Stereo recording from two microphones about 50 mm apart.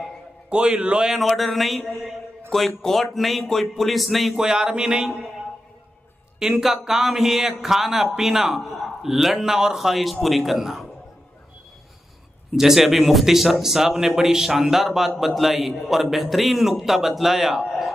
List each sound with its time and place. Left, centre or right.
0.5 s a man's voice: centre
1.1 s speech: centre
4.4 s a man's voice: centre
6.4 s a man's voice: centre
12.5 s speech: centre